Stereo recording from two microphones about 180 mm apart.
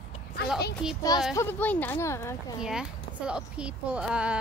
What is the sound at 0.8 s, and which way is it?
Speech, 5° right (ahead or behind).